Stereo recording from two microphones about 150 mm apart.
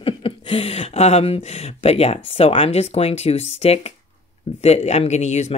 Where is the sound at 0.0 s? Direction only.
40° left (ahead or behind).